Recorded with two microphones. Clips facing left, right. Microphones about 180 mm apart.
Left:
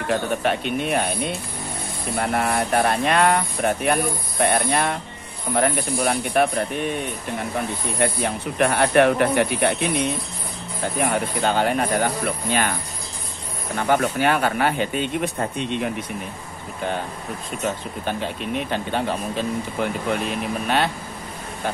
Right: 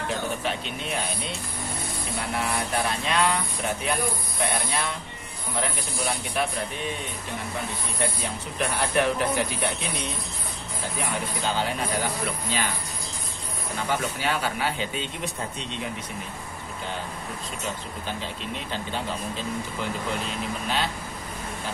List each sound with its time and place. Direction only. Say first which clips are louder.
0.1 s speech: left 9 dB; 60° left (ahead or behind)
8.0 s speech: left 7 dB; 60° left (ahead or behind)
11.0 s speech: left 8 dB; 55° left (ahead or behind)
13.7 s speech: left 8 dB; 60° left (ahead or behind)
18.0 s speech: left 8 dB; 60° left (ahead or behind)